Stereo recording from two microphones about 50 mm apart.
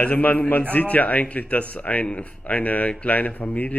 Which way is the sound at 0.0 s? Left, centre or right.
Left.